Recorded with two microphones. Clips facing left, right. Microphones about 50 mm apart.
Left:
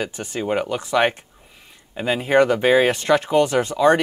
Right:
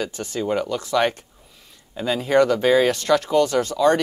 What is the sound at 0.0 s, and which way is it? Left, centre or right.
Speech, left.